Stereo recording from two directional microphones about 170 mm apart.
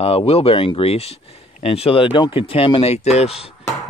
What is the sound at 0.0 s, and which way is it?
Speech, 35° left (ahead or behind).